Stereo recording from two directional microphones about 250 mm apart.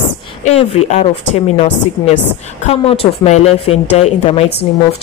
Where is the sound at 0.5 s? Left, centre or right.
Left.